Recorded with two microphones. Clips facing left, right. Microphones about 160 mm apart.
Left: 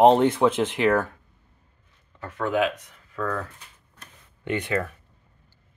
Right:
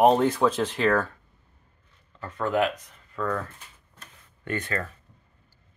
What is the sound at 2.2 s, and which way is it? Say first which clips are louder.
Speech: left 1 dB; 5° left (ahead or behind).